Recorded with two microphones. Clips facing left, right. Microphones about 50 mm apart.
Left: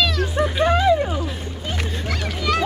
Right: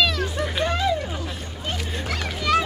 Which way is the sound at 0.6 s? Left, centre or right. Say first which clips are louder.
Left 7 dB; centre.